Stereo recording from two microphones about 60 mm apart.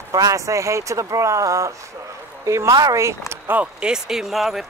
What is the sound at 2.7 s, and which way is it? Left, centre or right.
Speech, right.